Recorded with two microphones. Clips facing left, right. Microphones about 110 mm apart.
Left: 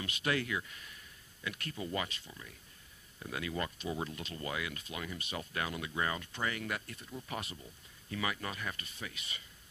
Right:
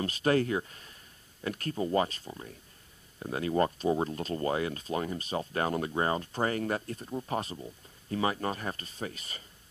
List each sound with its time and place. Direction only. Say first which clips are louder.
0.0 s speech: right 8 dB; 35° right (ahead or behind)